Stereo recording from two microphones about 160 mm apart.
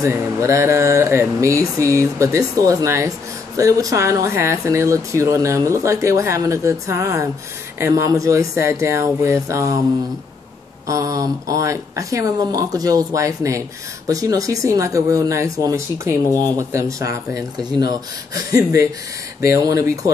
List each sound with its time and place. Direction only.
0.0 s speech: 20° right (ahead or behind)
10.9 s speech: 20° right (ahead or behind)
16.3 s speech: 10° left (ahead or behind)
16.5 s speech: 20° right (ahead or behind)